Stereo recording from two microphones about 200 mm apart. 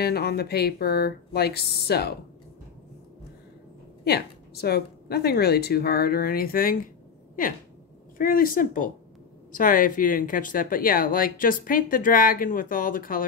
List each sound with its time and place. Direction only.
0.0 s speech: 50° left (ahead or behind)
4.0 s speech: 50° left (ahead or behind)
8.2 s speech: 45° left (ahead or behind)